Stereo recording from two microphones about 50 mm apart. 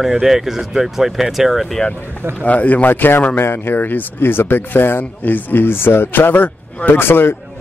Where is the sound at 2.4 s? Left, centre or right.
Left.